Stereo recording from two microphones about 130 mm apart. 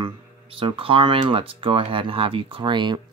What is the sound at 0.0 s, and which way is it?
Speech, 40° right (ahead or behind).